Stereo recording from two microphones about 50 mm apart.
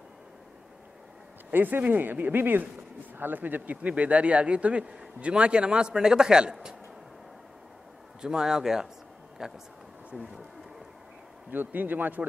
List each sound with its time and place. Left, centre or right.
1.5 s a man's voice: right; by 6.8 s centre
8.2 s a man's voice: centre
11.5 s a man's voice: right